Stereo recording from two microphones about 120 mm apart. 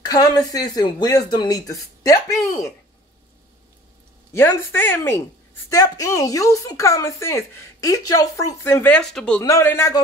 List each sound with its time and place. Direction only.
0.0 s speech: 35° left (ahead or behind)
4.3 s a woman's voice: 20° left (ahead or behind)
5.7 s a woman's voice: 30° left (ahead or behind)
8.9 s speech: 5° left (ahead or behind)
9.4 s a woman's voice: 25° left (ahead or behind)